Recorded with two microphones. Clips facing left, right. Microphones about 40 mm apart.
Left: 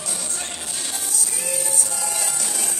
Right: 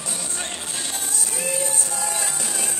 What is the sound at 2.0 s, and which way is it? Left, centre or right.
Music, right.